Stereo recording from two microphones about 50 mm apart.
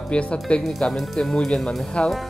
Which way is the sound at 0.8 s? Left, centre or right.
Centre.